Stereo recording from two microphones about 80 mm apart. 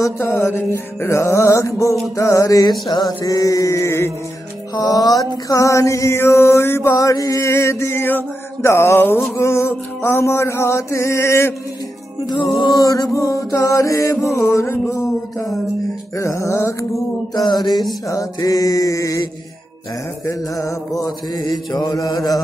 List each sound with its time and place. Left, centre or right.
0.2 s music: left
2.1 s mantra: left
2.9 s mantra: left
3.3 s music: left
4.7 s music: left
7.0 s music: left
12.7 s music: left
14.9 s mantra: left
16.2 s music: left
17.3 s mantra: left
18.0 s mantra: left
20.2 s mantra: left